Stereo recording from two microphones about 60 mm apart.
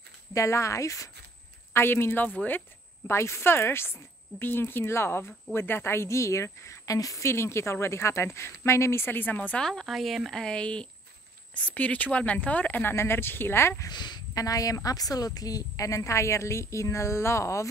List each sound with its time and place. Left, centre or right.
0.3 s a woman's voice: left
1.7 s speech: left
2.2 s speech: left
3.1 s a woman's voice: left
7.2 s a woman's voice: left
9.3 s speech: left
9.6 s a woman's voice: centre
10.4 s speech: centre
12.8 s a woman's voice: left
13.8 s a woman's voice: left